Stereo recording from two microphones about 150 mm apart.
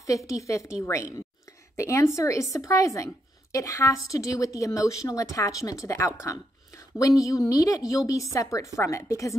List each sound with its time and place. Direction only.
0.3 s a woman's voice: 20° left (ahead or behind)